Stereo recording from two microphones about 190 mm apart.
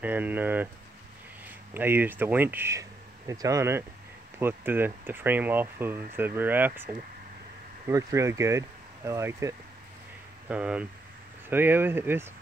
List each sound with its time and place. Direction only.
0.0 s speech: 10° right (ahead or behind)
1.7 s speech: 10° right (ahead or behind)
7.9 s speech: 15° right (ahead or behind)